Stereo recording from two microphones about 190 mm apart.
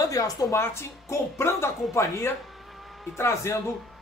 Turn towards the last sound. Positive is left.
turn(degrees=15)  # may be behind; listen again after turning